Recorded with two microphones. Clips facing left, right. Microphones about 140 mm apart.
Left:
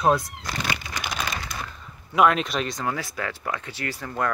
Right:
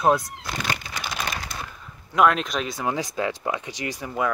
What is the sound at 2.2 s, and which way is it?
Speech, centre (ahead or behind).